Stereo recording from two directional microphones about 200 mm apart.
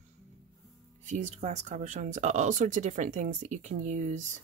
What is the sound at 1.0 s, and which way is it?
Speech, 40° right (ahead or behind).